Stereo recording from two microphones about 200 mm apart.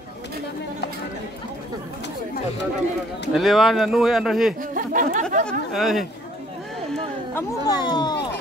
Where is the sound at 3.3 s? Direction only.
Centre (ahead or behind).